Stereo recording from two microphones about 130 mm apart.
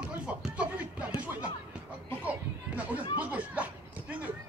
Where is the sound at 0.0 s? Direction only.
10° right (ahead or behind).